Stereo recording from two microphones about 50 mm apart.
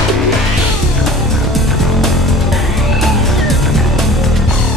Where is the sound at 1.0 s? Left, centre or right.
Centre.